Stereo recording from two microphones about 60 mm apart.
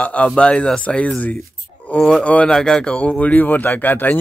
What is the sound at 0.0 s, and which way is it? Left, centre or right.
Speech, left.